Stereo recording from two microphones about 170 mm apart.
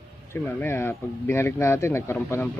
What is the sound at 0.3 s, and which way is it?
Speech, 10° left (ahead or behind).